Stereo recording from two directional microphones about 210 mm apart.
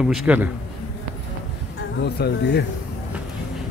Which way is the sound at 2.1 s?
50° left (ahead or behind).